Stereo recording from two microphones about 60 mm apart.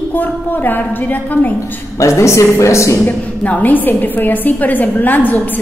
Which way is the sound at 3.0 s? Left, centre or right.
Left.